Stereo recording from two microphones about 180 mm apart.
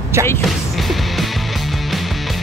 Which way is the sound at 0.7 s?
Centre (ahead or behind).